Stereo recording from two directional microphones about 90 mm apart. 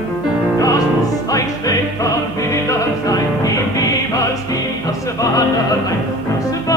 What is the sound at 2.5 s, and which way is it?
Music, 40° left (ahead or behind).